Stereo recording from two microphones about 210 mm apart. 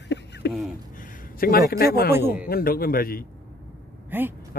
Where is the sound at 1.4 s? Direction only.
45° left (ahead or behind).